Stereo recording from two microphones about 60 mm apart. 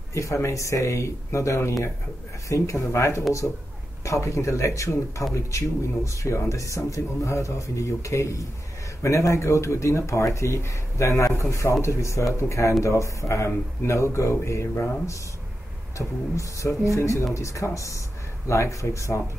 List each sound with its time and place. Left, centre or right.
0.1 s speech: left